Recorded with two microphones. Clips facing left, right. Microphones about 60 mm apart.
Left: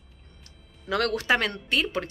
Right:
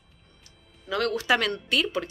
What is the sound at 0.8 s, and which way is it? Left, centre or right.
Speech, left.